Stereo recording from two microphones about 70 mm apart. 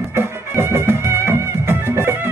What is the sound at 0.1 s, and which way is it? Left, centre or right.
Music, right.